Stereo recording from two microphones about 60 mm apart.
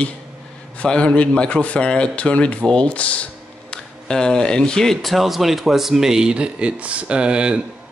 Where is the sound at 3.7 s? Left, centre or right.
Centre.